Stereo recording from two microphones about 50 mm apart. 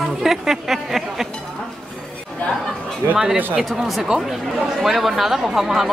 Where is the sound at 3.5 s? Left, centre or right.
Centre.